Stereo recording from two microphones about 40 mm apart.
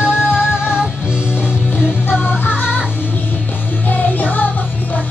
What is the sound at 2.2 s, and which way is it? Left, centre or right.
Music, left.